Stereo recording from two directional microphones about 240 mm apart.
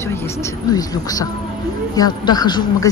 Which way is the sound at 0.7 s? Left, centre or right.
Centre.